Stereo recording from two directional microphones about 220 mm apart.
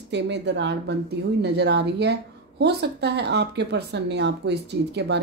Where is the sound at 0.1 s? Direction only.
50° right (ahead or behind).